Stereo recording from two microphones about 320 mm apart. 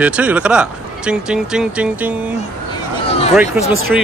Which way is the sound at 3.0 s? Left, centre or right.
Centre.